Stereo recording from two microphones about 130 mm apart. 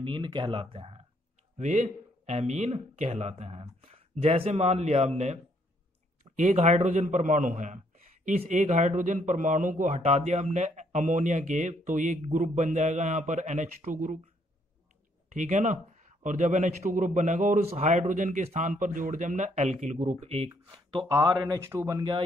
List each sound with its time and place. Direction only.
0.0 s speech: 35° right (ahead or behind)
1.6 s speech: 60° right (ahead or behind); by 14.2 s 90° right
15.3 s speech: 70° right (ahead or behind)
17.6 s speech: 60° right (ahead or behind)
20.4 s speech: 35° right (ahead or behind)
21.1 s speech: 25° right (ahead or behind)